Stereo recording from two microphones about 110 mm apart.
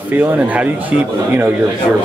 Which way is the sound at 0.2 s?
15° right (ahead or behind).